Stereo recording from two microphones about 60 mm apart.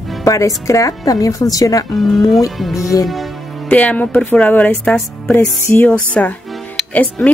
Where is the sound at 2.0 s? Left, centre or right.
Centre.